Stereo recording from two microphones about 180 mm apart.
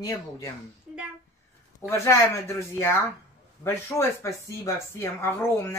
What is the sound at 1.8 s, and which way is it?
Speech, 15° left (ahead or behind).